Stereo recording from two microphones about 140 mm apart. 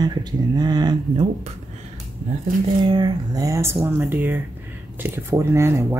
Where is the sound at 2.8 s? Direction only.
30° right (ahead or behind).